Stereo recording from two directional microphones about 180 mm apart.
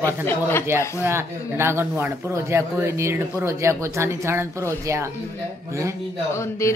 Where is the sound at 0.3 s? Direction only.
15° left (ahead or behind).